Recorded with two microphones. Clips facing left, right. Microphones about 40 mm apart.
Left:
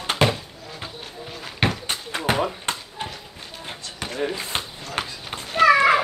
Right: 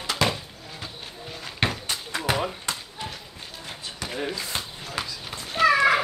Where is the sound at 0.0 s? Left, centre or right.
Left.